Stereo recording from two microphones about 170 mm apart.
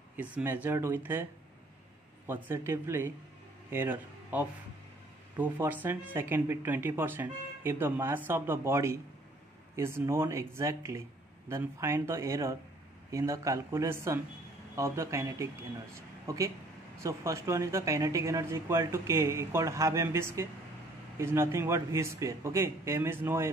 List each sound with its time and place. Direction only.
0.1 s speech: 10° right (ahead or behind)
2.2 s a man's voice: 10° right (ahead or behind)